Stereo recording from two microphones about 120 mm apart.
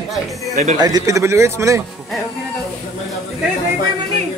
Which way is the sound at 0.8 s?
30° right (ahead or behind).